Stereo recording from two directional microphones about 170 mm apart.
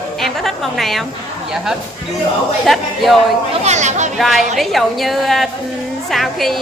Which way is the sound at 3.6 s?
45° right (ahead or behind).